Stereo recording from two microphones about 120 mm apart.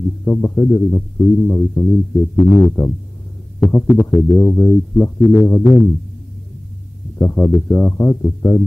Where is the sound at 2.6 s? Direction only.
20° left (ahead or behind).